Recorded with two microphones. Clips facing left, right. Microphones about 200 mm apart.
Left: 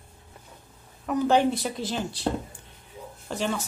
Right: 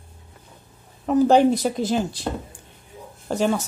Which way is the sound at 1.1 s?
35° right (ahead or behind).